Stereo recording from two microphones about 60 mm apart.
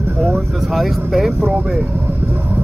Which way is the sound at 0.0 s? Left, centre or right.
Right.